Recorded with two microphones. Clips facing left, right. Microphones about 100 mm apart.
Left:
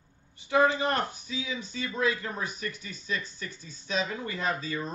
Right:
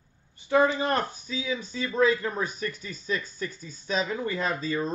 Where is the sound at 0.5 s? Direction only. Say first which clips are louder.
Right 2 dB; 35° right (ahead or behind).